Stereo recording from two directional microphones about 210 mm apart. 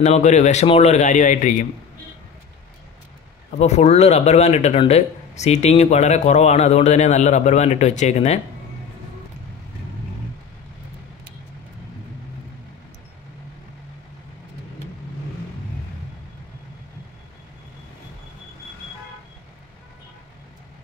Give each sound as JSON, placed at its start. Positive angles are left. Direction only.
{"t": 0.0, "sound": "speech", "side_deg": 35}
{"t": 3.5, "sound": "speech", "side_deg": 30}